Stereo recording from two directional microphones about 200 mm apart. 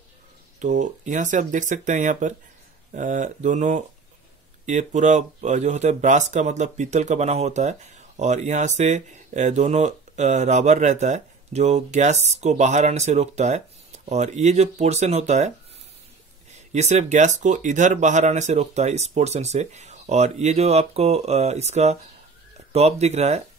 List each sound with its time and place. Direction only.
0.6 s speech: 40° right (ahead or behind)
16.5 s speech: 35° right (ahead or behind)